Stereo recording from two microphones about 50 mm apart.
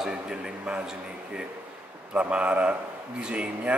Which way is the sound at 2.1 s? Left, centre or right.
Right.